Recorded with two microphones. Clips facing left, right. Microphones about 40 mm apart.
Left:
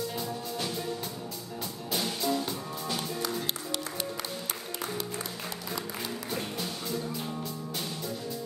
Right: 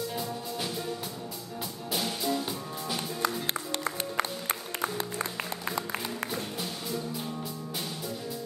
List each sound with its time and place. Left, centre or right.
0.1 s music: centre
1.9 s music: centre
3.2 s music: right
5.7 s music: right